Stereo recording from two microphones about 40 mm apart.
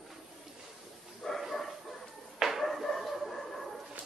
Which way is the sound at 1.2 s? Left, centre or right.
Centre.